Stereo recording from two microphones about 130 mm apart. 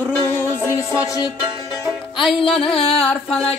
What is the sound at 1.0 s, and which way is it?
Music, 25° left (ahead or behind).